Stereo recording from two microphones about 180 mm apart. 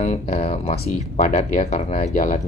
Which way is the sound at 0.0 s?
40° left (ahead or behind).